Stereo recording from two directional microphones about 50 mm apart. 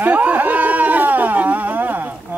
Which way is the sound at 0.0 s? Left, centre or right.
Right.